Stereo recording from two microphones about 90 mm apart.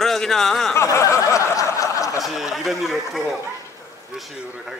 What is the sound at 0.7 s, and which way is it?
Snicker, 35° left (ahead or behind).